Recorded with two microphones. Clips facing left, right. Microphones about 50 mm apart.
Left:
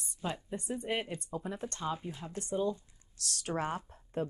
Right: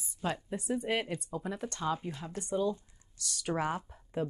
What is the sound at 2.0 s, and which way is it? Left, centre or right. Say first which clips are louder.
Speech: right 2 dB; right.